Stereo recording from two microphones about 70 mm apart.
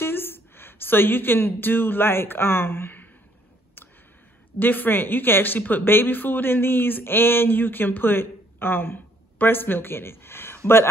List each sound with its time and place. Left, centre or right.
0.0 s a woman's voice: left
4.6 s speech: left